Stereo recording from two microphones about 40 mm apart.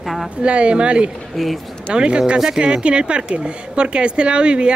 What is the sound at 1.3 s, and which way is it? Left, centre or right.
Speech, centre.